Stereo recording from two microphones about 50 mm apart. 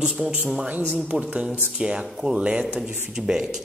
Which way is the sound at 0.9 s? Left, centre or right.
Centre.